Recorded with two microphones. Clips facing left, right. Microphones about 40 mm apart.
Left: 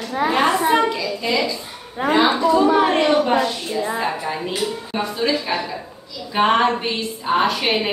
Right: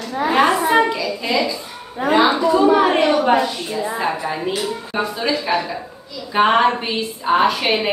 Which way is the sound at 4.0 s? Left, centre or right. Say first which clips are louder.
Right 1 dB; centre.